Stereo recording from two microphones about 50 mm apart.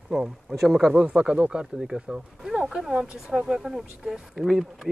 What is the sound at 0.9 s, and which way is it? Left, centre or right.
Speech, centre.